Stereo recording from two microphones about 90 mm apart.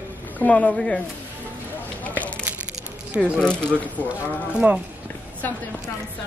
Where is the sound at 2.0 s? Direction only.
15° left (ahead or behind).